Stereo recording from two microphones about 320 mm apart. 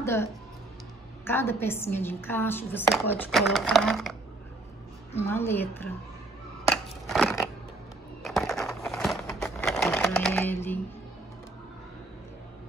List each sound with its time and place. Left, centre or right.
0.0 s a woman's voice: centre
5.2 s a woman's voice: centre
7.1 s crushing: centre
8.2 s a sound: centre